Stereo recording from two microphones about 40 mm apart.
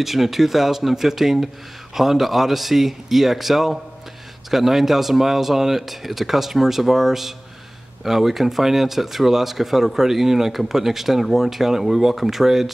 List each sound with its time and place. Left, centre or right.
0.0 s a man's voice: centre